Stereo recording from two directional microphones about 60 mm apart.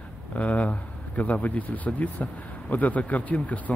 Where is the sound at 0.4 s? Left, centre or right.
Left.